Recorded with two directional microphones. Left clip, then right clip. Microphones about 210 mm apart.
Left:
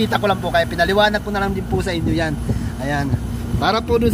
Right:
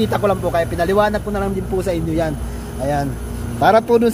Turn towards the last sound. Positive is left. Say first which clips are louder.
# right 5 dB
turn(degrees=-35)  # may be behind; listen again after turning